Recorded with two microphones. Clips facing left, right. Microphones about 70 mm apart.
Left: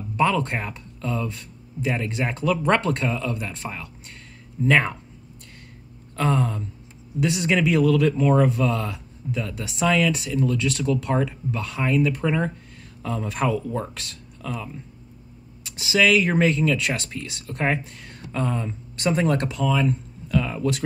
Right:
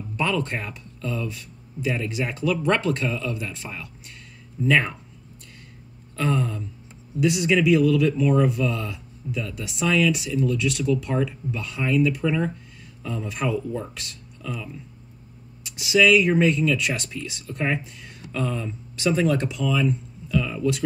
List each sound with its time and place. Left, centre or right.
0.2 s speech: left
6.1 s speech: left
13.0 s speech: left
14.4 s speech: left
15.8 s speech: left